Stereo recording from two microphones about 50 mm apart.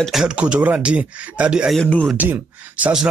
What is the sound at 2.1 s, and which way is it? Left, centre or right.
Speech, right.